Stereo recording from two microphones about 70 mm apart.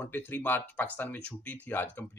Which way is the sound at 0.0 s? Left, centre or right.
Left.